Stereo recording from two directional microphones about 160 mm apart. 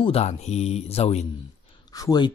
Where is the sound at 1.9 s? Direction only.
25° left (ahead or behind).